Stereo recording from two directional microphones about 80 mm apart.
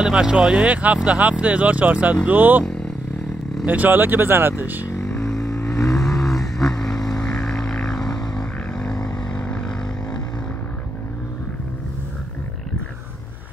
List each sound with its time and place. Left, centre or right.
0.0 s speech: centre
2.6 s vehicle: centre
3.6 s speech: right
4.9 s vehicle: left
6.2 s vehicle: centre
9.3 s vehicle: centre